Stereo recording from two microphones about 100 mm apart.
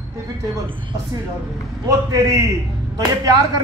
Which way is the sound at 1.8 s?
35° right (ahead or behind).